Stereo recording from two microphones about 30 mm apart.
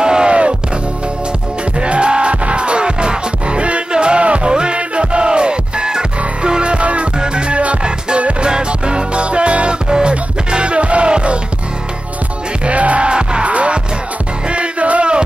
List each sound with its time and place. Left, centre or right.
0.0 s music: right
0.3 s music: right
1.8 s music: right
7.2 s music: right
8.5 s music: right
9.8 s music: right
12.6 s music: right